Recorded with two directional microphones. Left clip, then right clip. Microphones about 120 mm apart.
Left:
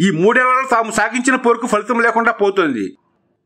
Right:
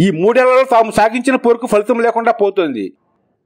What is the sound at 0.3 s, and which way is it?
A man's voice, 40° right (ahead or behind).